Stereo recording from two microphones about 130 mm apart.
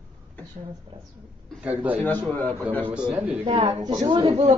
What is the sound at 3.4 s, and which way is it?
A woman's voice, 40° right (ahead or behind).